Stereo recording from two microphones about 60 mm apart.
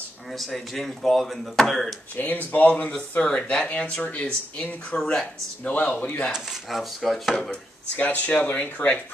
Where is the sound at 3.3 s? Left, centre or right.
Centre.